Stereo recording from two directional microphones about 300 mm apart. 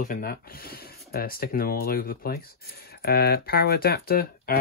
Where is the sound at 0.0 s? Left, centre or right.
Left.